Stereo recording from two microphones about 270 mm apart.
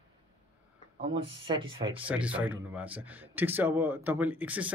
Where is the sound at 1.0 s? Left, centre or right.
Centre.